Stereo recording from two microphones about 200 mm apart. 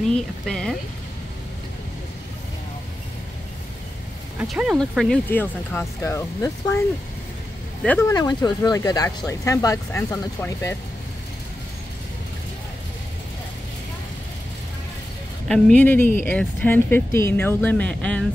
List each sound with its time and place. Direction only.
0.1 s speech: 5° left (ahead or behind)
4.4 s speech: 5° right (ahead or behind); by 6.8 s 15° left (ahead or behind)
7.8 s speech: 5° left (ahead or behind)
8.1 s speech: 20° left (ahead or behind)
15.4 s speech: 5° left (ahead or behind)